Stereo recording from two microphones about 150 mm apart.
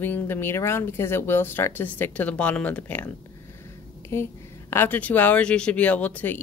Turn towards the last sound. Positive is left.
turn(degrees=10)  # may be behind; listen again after turning